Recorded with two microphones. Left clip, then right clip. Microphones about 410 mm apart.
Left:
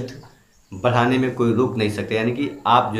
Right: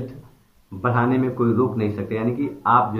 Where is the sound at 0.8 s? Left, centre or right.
Centre.